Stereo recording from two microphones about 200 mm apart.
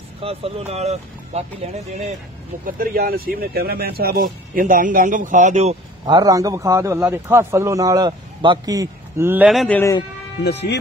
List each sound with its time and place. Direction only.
0.2 s speech: 30° right (ahead or behind)
2.6 s speech: 45° right (ahead or behind)
6.0 s a man's voice: 20° right (ahead or behind); by 9.8 s centre (ahead or behind)
9.8 s a man's voice: 15° left (ahead or behind)